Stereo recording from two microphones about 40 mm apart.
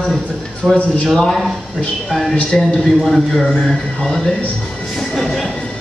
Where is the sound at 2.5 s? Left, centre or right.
Centre.